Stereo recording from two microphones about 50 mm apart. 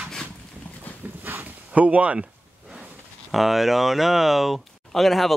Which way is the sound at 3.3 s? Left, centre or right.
Centre.